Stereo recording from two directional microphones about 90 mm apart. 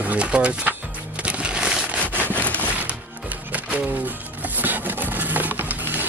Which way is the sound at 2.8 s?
15° right (ahead or behind).